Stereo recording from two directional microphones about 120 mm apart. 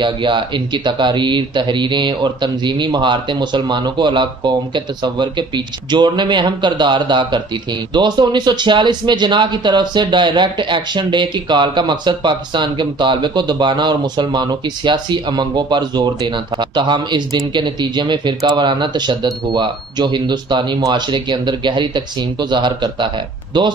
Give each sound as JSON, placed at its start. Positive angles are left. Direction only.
{"t": 0.0, "sound": "speech", "side_deg": -40}